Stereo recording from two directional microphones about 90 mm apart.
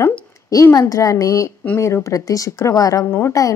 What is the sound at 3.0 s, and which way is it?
Speech, 25° left (ahead or behind).